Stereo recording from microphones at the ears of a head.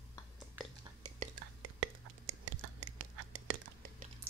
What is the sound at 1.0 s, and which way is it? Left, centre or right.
Whispering, right.